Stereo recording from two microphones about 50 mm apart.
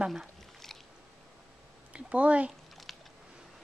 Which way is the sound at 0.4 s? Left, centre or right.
Centre.